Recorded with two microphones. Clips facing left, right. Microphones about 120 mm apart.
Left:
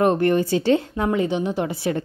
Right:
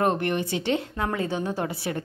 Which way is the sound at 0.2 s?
35° left (ahead or behind).